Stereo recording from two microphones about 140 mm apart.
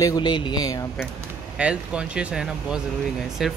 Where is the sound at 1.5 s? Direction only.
10° right (ahead or behind).